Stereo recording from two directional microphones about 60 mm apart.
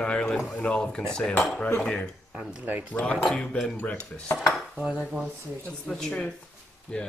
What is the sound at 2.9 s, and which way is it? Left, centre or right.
Speech, left.